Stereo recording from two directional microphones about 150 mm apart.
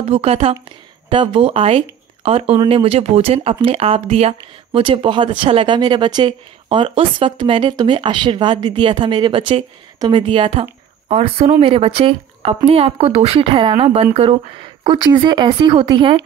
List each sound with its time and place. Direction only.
0.0 s a woman's voice: 40° right (ahead or behind)